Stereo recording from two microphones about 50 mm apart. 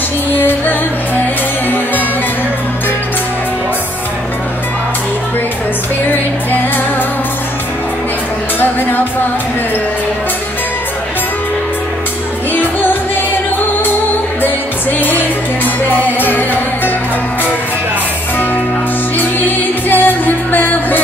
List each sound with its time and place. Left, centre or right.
0.4 s music: left
14.4 s music: left
19.1 s music: left